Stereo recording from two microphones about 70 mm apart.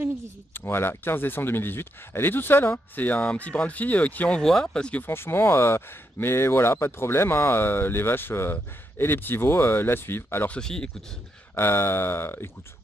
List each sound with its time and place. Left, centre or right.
0.5 s speech: left
4.4 s speech: centre
5.0 s speech: left
10.5 s speech: centre
11.5 s speech: left